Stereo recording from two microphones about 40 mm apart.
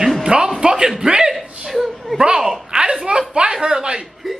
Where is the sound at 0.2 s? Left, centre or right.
Centre.